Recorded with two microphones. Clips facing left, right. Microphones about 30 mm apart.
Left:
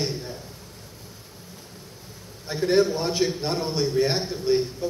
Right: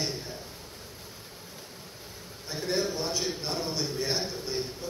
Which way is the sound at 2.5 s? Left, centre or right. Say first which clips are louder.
Left 9 dB; left.